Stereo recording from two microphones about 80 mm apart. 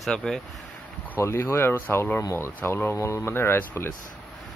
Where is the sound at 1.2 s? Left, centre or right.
Left.